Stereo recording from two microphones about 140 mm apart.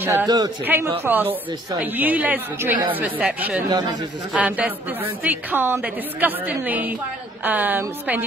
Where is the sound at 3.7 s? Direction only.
30° right (ahead or behind).